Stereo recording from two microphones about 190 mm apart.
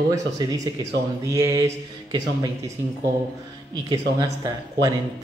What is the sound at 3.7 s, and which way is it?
Speech, 20° right (ahead or behind).